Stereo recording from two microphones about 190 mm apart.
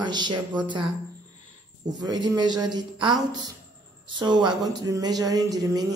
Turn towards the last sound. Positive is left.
turn(degrees=-20)  # may be behind; listen again after turning